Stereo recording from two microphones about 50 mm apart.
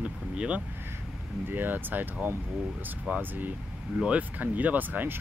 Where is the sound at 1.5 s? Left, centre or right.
Right.